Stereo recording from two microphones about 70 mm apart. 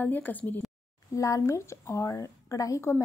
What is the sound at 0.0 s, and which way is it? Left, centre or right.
Speech, left.